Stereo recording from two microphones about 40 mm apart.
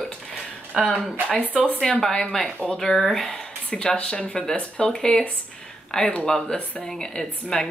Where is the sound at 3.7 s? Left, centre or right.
Left.